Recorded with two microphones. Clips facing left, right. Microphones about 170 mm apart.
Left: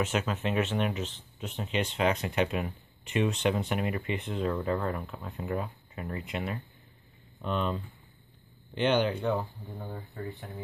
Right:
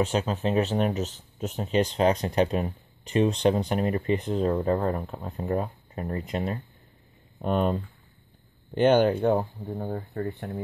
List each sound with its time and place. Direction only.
0.0 s speech: 35° right (ahead or behind); by 10.6 s 50° right (ahead or behind)